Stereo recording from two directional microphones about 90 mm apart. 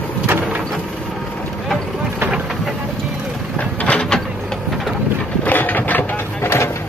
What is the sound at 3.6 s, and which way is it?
Mechanisms, 15° left (ahead or behind).